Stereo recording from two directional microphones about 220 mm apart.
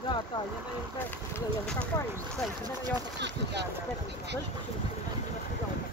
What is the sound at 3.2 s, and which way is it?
Speech, 50° right (ahead or behind).